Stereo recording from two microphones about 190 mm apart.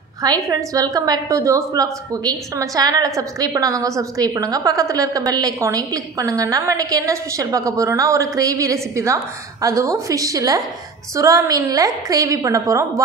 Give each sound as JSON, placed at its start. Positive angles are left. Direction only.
{"t": 0.2, "sound": "a woman's voice", "side_deg": -20}